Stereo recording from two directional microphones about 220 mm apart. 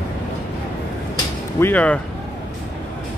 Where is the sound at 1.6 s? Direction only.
5° left (ahead or behind).